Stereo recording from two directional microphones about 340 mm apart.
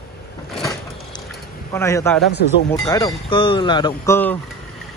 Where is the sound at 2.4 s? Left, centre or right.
Left.